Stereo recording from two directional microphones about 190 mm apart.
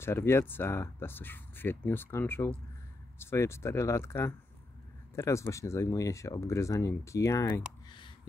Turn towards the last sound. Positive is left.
turn(degrees=15)  # may be behind; listen again after turning